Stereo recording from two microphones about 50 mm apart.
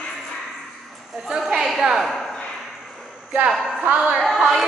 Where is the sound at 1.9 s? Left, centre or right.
Centre.